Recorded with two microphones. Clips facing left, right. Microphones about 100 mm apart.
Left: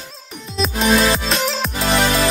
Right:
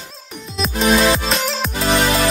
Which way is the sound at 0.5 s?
Centre (ahead or behind).